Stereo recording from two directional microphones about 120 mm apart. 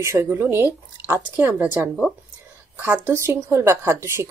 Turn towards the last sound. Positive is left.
turn(degrees=-20)  # may be behind; listen again after turning